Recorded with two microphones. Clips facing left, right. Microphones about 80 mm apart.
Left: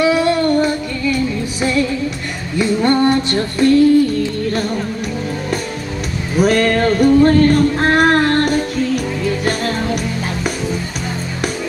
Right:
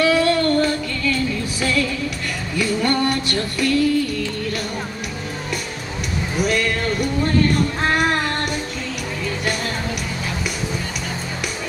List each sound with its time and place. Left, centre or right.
0.0 s music: centre; by 4.6 s left
6.4 s music: left